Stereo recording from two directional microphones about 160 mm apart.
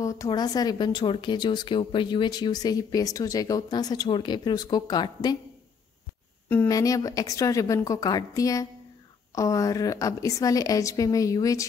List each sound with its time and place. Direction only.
0.0 s speech: 20° left (ahead or behind)
6.7 s speech: 20° left (ahead or behind)